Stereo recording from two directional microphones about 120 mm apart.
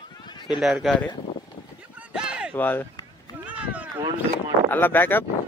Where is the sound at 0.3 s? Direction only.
40° left (ahead or behind).